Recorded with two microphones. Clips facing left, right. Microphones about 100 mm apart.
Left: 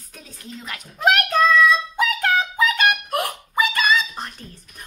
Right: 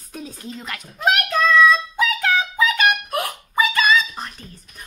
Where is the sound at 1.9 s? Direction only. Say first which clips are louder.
Even; 40° left (ahead or behind).